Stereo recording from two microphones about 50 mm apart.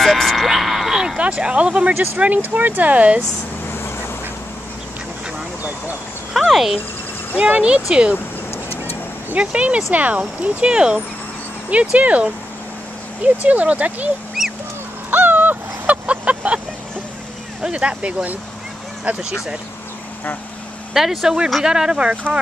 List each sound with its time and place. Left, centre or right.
0.0 s a sound: centre
1.3 s speech: right
2.1 s speech: right
3.6 s goose: left
6.3 s speech: centre
7.9 s speech: right
8.5 s vehicle: left
9.4 s speech: right
14.4 s dog: centre
15.0 s a sound: right
17.6 s speech: centre
20.9 s speech: centre